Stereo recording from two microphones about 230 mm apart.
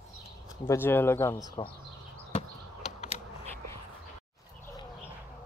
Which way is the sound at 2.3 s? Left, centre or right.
Left.